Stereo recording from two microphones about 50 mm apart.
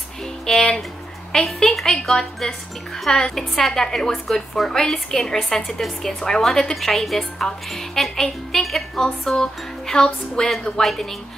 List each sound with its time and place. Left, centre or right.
0.2 s music: centre
1.3 s a woman's voice: centre
10.8 s a woman's voice: centre